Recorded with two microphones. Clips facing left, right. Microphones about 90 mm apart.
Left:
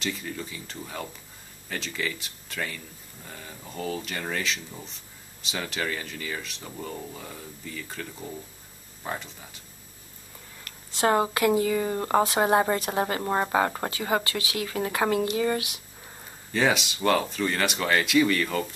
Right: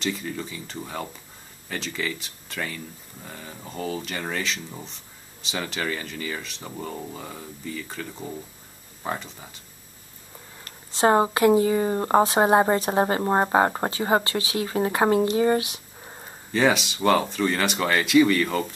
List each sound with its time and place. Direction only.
0.0 s speech: centre (ahead or behind)
10.6 s a woman's voice: 30° right (ahead or behind)
16.5 s speech: centre (ahead or behind)